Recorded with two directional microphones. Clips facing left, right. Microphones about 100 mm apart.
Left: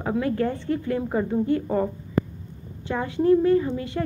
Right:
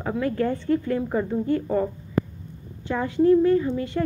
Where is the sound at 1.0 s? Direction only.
15° left (ahead or behind).